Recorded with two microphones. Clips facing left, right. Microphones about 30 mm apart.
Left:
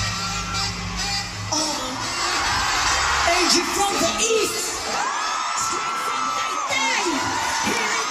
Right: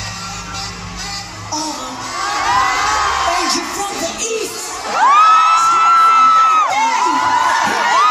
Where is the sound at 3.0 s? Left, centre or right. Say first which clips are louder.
Right 5 dB; centre.